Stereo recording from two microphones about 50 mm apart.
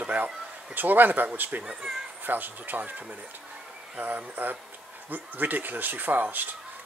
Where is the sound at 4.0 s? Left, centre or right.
Right.